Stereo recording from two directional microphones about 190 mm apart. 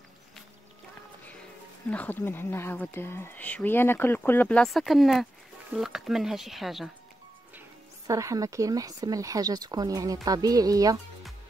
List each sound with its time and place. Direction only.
1.9 s speech: 10° left (ahead or behind)
8.1 s speech: 15° right (ahead or behind)